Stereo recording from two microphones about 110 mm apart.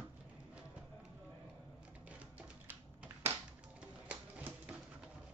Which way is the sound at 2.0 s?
10° right (ahead or behind).